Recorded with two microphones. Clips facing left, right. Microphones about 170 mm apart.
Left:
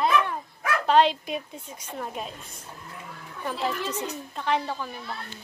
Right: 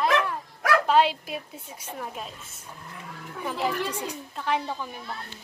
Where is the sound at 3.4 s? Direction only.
10° right (ahead or behind).